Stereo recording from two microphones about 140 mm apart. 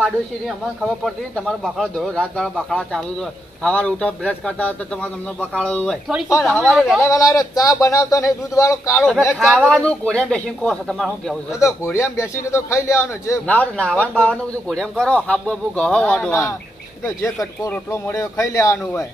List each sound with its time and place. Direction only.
0.8 s speech: centre (ahead or behind)
3.6 s speech: 10° left (ahead or behind)
6.0 s speech: 5° right (ahead or behind)
7.0 s a man's voice: 25° left (ahead or behind)
9.3 s speech: centre (ahead or behind)
11.6 s speech: 20° left (ahead or behind); by 17.7 s centre (ahead or behind)
17.9 s a man's voice: 20° left (ahead or behind)